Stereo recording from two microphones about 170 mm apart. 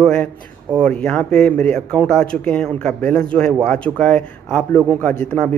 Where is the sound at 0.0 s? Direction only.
5° left (ahead or behind).